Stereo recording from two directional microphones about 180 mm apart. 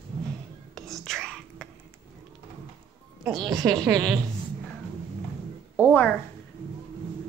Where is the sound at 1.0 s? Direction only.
Centre (ahead or behind).